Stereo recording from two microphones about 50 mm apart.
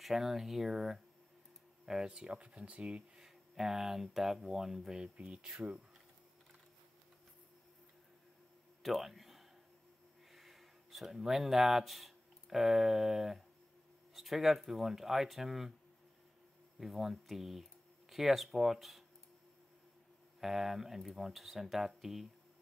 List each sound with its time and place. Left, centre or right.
0.0 s speech: centre
2.0 s speech: centre
5.1 s speech: right
8.8 s a sound: centre
10.3 s speech: centre
16.8 s speech: centre
20.3 s speech: centre